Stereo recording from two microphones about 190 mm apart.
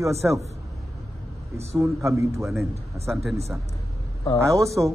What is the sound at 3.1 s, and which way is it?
Speech, centre (ahead or behind).